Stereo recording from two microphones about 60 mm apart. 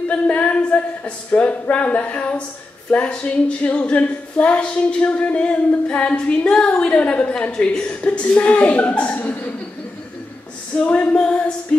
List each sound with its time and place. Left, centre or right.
0.1 s a woman's voice: left
10.8 s a woman's voice: left